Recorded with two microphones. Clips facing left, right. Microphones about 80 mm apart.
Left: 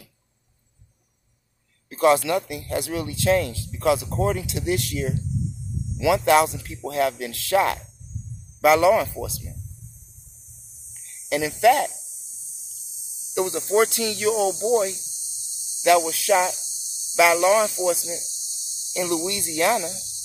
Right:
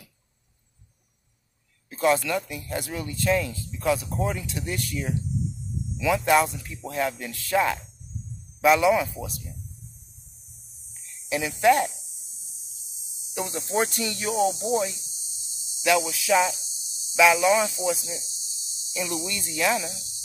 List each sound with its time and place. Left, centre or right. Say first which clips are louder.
1.9 s speech: left 4 dB; left
5.9 s speech: left 3 dB; left
10.9 s a sound: left 3 dB; left
13.3 s speech: left 6 dB; left
13.8 s speech: left 6 dB; left
18.9 s speech: left 6 dB; left